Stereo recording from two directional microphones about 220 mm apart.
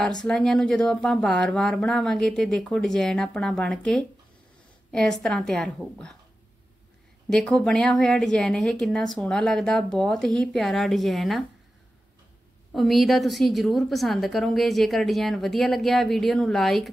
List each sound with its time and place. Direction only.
0.1 s a woman's voice: 5° left (ahead or behind)
7.2 s a woman's voice: 5° left (ahead or behind)
12.7 s a woman's voice: centre (ahead or behind)